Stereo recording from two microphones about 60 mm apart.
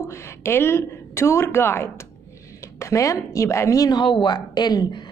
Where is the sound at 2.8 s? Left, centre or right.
Left.